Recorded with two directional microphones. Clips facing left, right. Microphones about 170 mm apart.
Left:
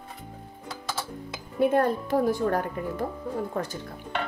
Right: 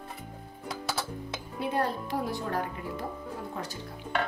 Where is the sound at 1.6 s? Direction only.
50° left (ahead or behind).